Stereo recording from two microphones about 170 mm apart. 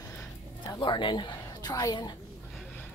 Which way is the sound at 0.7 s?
25° left (ahead or behind).